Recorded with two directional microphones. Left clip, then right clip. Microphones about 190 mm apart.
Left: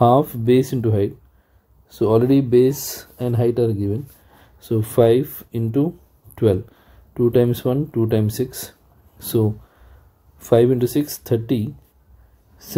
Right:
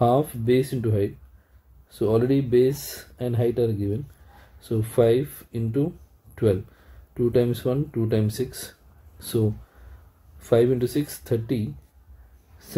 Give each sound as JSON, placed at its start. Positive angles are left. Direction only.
{"t": 0.0, "sound": "speech", "side_deg": 25}
{"t": 10.4, "sound": "speech", "side_deg": 20}